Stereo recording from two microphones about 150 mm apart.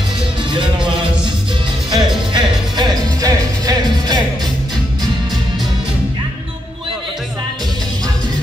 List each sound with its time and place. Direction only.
1.9 s music: 30° right (ahead or behind)